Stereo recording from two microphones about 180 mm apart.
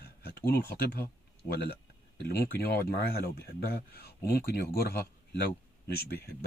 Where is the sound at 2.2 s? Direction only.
60° left (ahead or behind).